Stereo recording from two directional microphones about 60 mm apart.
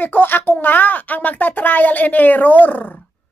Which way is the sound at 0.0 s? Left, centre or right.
Left.